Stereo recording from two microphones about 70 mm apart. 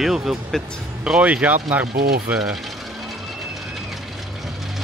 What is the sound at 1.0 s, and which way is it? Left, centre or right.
Speech, centre.